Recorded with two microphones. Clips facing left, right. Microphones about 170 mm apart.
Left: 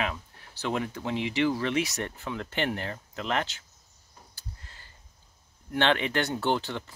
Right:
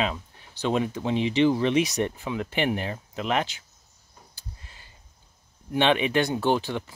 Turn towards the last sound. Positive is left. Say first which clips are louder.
# right 4 dB
turn(degrees=-15)  # may be behind; listen again after turning